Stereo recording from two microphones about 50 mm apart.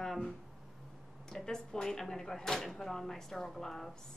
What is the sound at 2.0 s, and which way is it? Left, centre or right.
Speech, centre.